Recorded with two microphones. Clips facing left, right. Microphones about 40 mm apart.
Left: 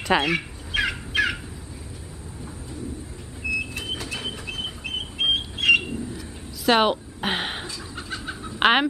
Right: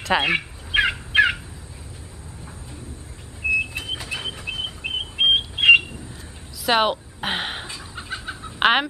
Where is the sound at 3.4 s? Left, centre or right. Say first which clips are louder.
Right 5 dB; right.